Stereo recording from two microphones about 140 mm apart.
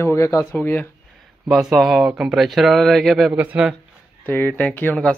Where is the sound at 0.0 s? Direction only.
20° left (ahead or behind).